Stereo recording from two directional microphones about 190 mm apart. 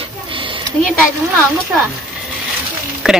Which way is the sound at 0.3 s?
25° right (ahead or behind).